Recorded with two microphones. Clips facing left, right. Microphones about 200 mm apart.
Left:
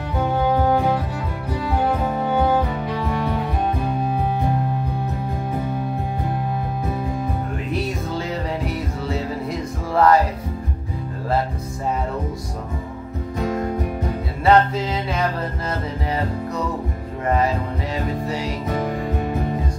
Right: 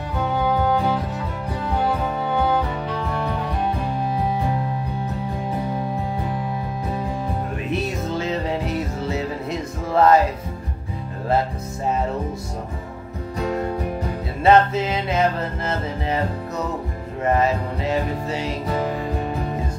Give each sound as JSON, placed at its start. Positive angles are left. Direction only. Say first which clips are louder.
{"t": 7.7, "sound": "music", "louder": "right 1 dB", "side_deg": -25}
{"t": 14.4, "sound": "music", "louder": "right 1 dB", "side_deg": -25}
{"t": 17.4, "sound": "music", "louder": "right 1 dB", "side_deg": -25}